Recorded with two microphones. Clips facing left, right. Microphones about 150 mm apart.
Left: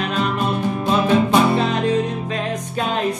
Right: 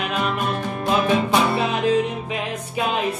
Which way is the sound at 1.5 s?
10° right (ahead or behind).